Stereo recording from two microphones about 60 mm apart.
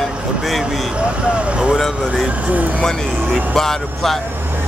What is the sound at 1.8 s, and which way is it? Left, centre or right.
Speech, centre.